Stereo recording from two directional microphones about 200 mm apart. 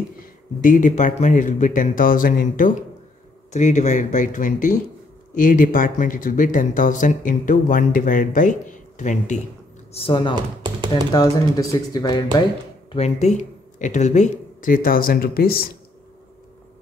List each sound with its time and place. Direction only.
0.2 s speech: 40° left (ahead or behind)
9.9 s speech: 25° left (ahead or behind)
10.3 s speech: 20° right (ahead or behind)
10.9 s speech: 20° left (ahead or behind)
12.9 s speech: 35° left (ahead or behind); by 15.8 s 50° left (ahead or behind)